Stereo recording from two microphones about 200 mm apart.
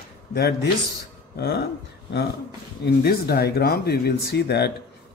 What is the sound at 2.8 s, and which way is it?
Speech, 55° left (ahead or behind).